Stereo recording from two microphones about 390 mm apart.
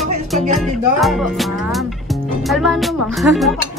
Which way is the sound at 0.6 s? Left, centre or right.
Centre.